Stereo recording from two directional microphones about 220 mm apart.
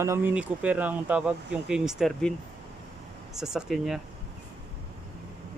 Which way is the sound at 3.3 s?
Centre (ahead or behind).